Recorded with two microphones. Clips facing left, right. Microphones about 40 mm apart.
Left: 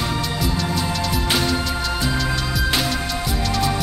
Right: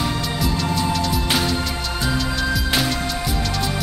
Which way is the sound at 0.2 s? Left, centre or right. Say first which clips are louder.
Even; centre.